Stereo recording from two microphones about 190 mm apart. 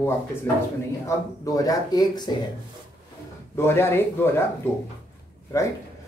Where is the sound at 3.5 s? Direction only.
15° left (ahead or behind).